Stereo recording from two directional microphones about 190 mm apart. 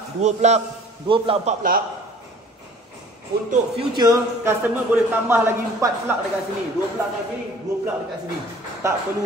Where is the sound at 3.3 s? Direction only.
60° right (ahead or behind).